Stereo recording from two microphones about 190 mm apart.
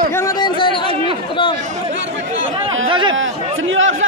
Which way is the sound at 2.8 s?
25° right (ahead or behind).